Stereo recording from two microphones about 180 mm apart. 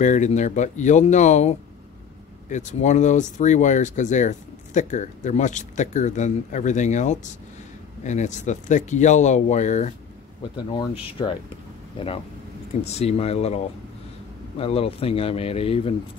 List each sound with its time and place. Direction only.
0.0 s speech: 45° left (ahead or behind)
10.7 s speech: 25° left (ahead or behind)
12.8 s speech: 35° left (ahead or behind)
14.6 s speech: 30° left (ahead or behind)